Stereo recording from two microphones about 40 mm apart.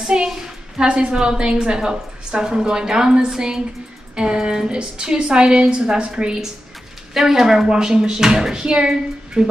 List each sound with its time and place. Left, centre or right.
0.1 s a woman's voice: right
7.2 s a woman's voice: centre; by 9.5 s right